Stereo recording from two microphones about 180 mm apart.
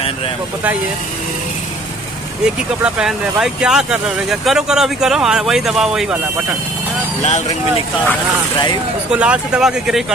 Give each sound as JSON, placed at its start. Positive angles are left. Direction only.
{"t": 2.4, "sound": "speech", "side_deg": -5}
{"t": 7.2, "sound": "speech", "side_deg": 40}
{"t": 9.1, "sound": "speech", "side_deg": -5}